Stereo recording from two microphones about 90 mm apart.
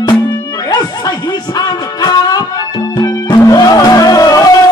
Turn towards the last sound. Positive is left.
turn(degrees=45)  # may be behind; listen again after turning